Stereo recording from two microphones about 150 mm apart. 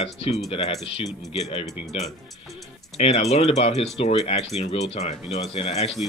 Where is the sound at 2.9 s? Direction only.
45° left (ahead or behind).